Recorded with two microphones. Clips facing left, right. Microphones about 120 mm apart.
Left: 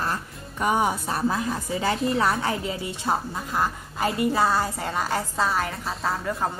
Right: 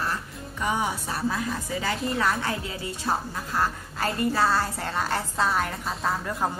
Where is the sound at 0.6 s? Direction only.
45° left (ahead or behind).